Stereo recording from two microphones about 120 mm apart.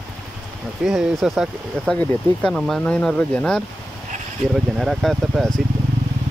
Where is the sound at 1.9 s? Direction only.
10° left (ahead or behind).